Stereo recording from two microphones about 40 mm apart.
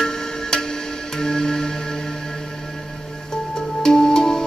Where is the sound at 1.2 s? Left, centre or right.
Centre.